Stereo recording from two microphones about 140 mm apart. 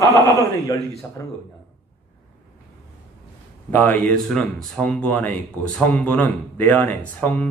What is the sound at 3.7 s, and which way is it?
Speech, 15° left (ahead or behind).